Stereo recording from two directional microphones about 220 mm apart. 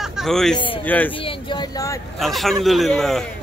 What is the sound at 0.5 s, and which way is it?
Speech, 25° left (ahead or behind).